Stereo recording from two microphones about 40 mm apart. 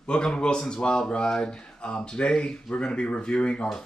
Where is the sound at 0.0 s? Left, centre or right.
Left.